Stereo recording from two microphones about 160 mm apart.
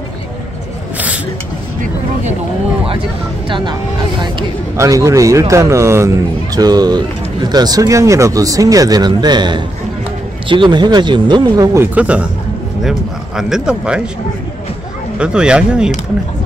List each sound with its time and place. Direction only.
0.9 s a sound: 10° right (ahead or behind)
2.9 s speech: 35° right (ahead or behind); by 12.3 s 10° right (ahead or behind)
13.4 s speech: 5° right (ahead or behind)
15.1 s speech: 5° right (ahead or behind)